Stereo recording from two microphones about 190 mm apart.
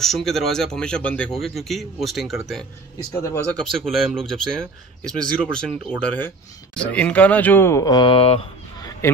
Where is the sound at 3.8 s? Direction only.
Centre (ahead or behind).